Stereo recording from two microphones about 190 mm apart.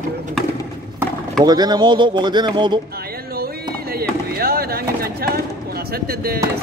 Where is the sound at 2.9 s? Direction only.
55° right (ahead or behind).